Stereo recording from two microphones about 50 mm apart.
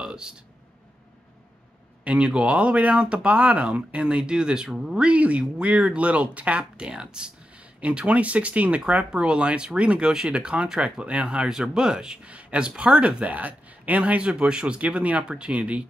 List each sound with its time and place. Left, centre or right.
0.0 s a sound: centre
2.0 s speech: right
5.1 s speech: right